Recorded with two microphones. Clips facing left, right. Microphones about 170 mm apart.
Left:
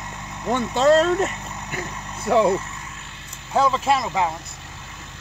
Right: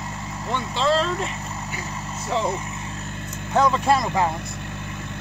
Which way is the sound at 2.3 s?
60° left (ahead or behind).